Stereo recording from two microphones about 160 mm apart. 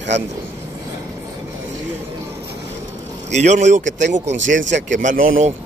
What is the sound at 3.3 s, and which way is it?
Speech, 45° right (ahead or behind).